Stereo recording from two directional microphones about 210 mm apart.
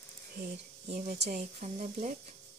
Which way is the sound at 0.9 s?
40° right (ahead or behind).